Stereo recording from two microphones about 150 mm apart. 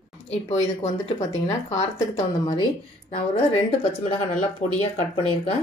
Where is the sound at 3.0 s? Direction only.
40° left (ahead or behind).